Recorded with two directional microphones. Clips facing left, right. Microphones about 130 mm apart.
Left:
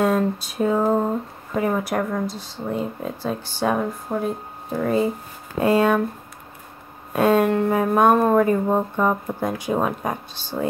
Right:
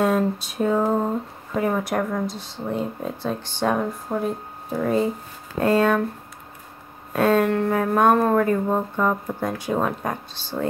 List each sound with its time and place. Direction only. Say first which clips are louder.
0.0 s speech: left 1 dB; centre (ahead or behind)
5.6 s speech: left 1 dB; 10° left (ahead or behind)
7.1 s speech: left 1 dB; 15° left (ahead or behind)